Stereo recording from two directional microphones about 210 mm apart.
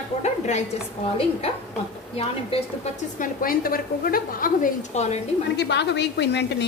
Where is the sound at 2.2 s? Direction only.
30° left (ahead or behind).